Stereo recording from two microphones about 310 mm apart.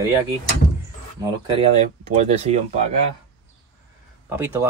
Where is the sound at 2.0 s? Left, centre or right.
Right.